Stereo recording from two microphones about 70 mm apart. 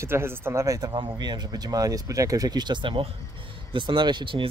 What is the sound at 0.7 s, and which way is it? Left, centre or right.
Speech, right.